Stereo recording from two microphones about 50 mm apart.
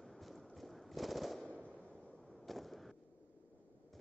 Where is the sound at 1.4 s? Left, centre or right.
Right.